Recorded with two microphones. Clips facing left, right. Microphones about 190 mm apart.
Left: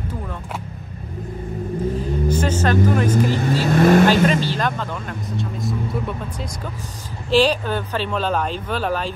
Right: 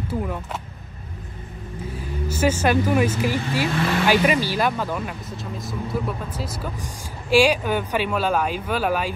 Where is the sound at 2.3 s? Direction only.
10° right (ahead or behind).